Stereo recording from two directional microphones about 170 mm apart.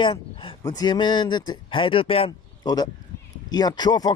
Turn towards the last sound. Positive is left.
turn(degrees=25)  # may be behind; listen again after turning